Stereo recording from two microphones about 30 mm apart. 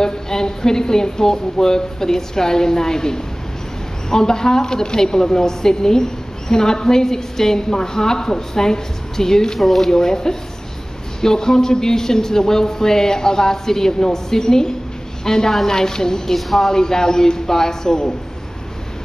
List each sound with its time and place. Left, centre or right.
0.0 s speech: left
9.6 s a woman's voice: centre
9.8 s speech: left
16.3 s a woman's voice: centre
16.7 s speech: centre